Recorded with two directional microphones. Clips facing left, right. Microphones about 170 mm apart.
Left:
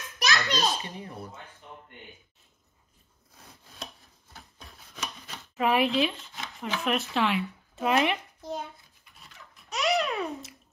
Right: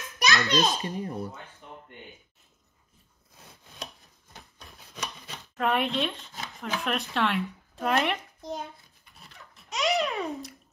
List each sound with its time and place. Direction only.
0.2 s a child's voice: centre (ahead or behind)
0.7 s a child's voice: 35° right (ahead or behind)
5.6 s speech: 5° left (ahead or behind)
9.7 s babbling: centre (ahead or behind)